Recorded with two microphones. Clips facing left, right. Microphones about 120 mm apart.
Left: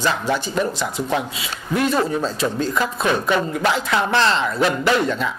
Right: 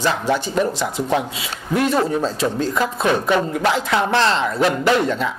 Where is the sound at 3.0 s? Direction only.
45° right (ahead or behind).